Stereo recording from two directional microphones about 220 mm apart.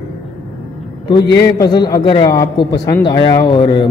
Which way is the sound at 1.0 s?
15° left (ahead or behind).